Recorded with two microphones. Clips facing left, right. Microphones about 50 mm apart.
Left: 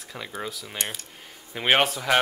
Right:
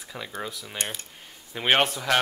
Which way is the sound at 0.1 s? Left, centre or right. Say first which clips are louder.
Left 1 dB; centre.